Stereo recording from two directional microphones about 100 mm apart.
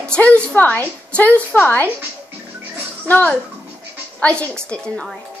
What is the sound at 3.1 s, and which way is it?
A woman's voice, 15° left (ahead or behind).